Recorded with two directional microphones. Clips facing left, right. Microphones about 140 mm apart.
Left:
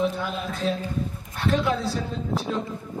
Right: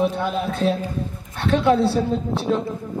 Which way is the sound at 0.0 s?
60° right (ahead or behind).